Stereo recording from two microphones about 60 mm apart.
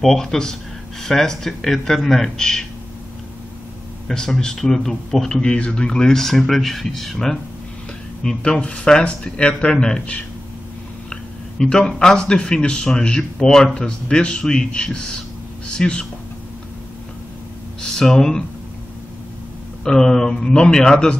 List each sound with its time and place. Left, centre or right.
0.0 s speech: centre
4.1 s speech: centre
11.1 s a sound: centre
12.0 s speech: centre
17.8 s speech: centre
19.8 s speech: centre